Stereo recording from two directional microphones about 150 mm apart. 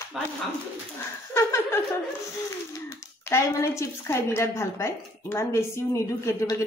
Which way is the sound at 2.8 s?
20° left (ahead or behind).